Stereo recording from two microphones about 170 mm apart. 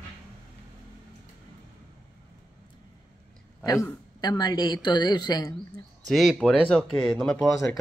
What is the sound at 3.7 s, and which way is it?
A woman's voice, 20° left (ahead or behind).